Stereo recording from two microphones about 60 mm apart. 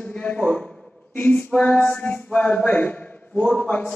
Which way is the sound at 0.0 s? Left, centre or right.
Left.